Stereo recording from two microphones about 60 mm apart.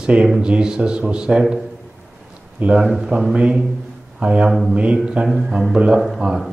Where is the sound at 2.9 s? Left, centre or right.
Centre.